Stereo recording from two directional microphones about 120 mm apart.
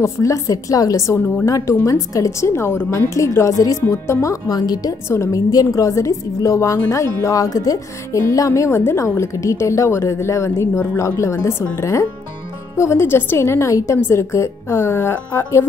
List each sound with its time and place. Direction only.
0.0 s speech: 25° left (ahead or behind)
5.0 s speech: 25° left (ahead or behind)